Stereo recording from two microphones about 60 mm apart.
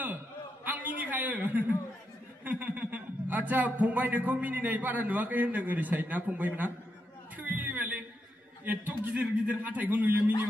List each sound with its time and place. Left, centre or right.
0.7 s a man's voice: right
7.4 s a sound: right
8.6 s a man's voice: right